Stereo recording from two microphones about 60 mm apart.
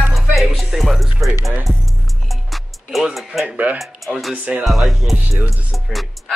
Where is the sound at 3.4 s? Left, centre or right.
Right.